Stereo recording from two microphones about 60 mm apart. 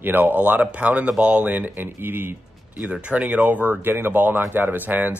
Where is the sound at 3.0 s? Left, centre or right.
Right.